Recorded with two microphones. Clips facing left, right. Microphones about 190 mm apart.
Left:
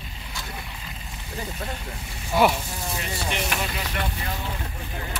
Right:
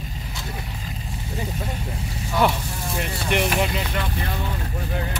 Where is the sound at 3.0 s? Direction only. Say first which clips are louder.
Right 7 dB; 60° right (ahead or behind).